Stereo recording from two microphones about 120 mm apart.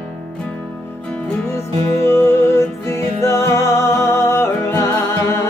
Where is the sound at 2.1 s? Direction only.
20° left (ahead or behind).